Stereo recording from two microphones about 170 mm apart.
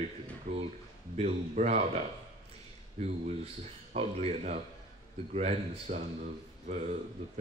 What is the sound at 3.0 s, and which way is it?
A man's voice, 35° right (ahead or behind).